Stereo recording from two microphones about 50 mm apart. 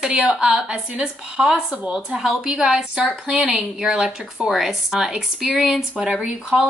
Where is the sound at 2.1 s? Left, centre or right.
Centre.